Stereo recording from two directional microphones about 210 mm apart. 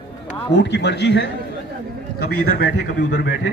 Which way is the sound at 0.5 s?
55° left (ahead or behind).